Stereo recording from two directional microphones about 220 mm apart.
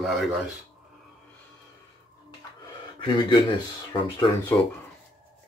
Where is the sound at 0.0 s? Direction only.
Centre (ahead or behind).